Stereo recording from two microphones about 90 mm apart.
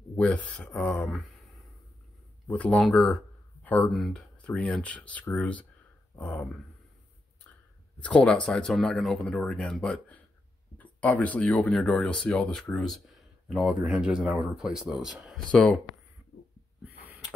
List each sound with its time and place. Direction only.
0.1 s speech: 10° left (ahead or behind)
2.4 s speech: 15° left (ahead or behind)
3.6 s speech: 20° left (ahead or behind)
3.9 s speech: centre (ahead or behind); by 6.5 s 15° left (ahead or behind)
8.0 s speech: 10° left (ahead or behind)
10.8 s speech: 15° left (ahead or behind)
11.7 s speech: 5° left (ahead or behind)